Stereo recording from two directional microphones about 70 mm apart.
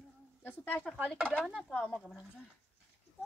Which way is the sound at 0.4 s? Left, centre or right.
Left.